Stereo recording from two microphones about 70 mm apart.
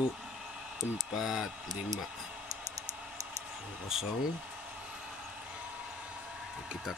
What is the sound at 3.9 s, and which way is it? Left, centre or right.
Speech, centre.